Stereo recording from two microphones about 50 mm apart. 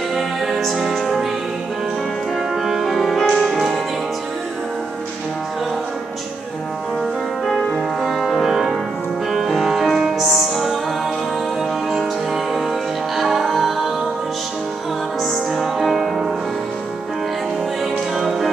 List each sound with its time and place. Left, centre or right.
0.1 s music: centre
2.5 s music: centre
7.4 s music: centre
13.1 s music: centre
15.2 s music: centre
18.1 s music: centre